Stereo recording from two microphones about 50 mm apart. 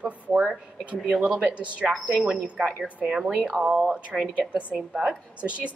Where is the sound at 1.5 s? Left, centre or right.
Right.